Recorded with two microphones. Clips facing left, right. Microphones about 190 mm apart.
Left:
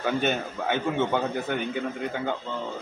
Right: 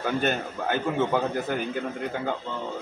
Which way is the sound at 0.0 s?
Centre (ahead or behind).